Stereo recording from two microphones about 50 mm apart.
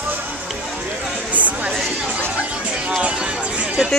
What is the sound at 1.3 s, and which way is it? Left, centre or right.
Chatter, right.